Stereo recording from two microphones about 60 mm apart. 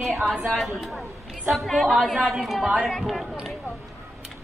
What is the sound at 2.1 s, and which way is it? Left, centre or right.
A woman's voice, centre.